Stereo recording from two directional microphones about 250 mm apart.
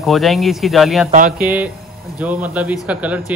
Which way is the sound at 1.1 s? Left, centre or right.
Right.